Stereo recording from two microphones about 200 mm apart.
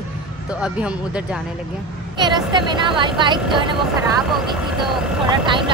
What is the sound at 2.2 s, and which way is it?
Speech, 20° right (ahead or behind).